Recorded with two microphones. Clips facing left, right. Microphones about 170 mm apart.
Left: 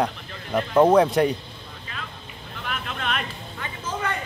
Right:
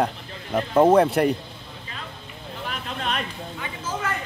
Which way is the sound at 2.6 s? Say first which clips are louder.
Even; 35° right (ahead or behind).